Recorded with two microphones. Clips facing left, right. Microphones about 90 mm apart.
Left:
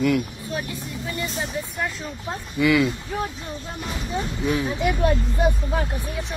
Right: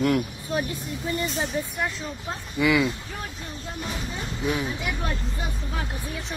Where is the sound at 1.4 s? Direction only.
Centre (ahead or behind).